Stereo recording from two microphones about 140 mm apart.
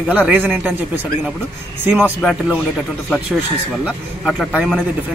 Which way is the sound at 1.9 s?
5° right (ahead or behind).